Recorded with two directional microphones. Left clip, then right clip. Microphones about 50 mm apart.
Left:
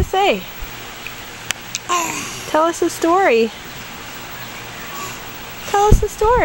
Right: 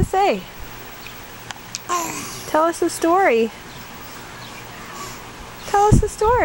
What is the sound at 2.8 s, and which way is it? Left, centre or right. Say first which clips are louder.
Speech: left 2 dB; centre.